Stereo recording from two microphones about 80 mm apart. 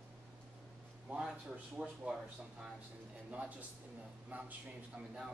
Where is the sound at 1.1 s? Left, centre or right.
Centre.